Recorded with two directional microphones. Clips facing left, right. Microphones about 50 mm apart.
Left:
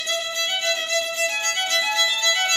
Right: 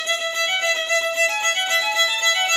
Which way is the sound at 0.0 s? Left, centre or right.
Right.